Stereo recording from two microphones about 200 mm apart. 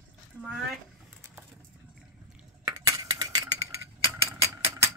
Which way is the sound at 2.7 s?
15° right (ahead or behind).